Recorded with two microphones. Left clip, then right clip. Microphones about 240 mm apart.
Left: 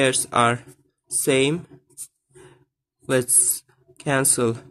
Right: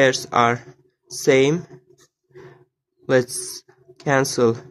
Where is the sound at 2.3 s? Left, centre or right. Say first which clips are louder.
Right 5 dB; centre.